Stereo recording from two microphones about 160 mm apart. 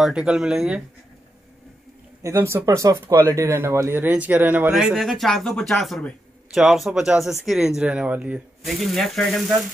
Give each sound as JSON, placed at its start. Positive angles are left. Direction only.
{"t": 0.0, "sound": "speech", "side_deg": -5}
{"t": 2.2, "sound": "speech", "side_deg": -15}